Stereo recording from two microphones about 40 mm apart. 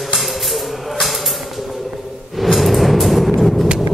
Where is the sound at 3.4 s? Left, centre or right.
Centre.